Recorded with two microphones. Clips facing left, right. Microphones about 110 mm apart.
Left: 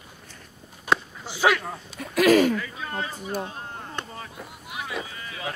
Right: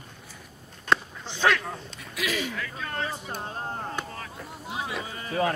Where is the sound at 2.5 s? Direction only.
5° left (ahead or behind).